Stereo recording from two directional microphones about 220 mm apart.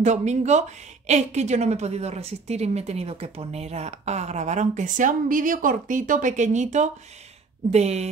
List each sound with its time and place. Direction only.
0.0 s a woman's voice: 30° right (ahead or behind)